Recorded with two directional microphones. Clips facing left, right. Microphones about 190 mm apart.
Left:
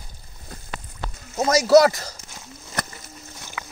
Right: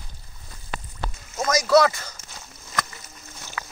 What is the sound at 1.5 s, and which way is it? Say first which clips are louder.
Speech: left 4 dB; 40° left (ahead or behind).